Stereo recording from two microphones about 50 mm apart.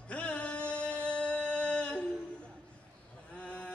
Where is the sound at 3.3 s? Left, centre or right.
Left.